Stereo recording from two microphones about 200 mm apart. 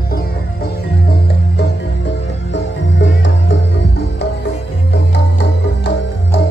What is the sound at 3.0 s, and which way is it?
Music, 65° left (ahead or behind).